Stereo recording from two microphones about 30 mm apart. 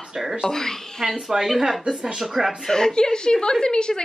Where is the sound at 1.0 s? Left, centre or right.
Centre.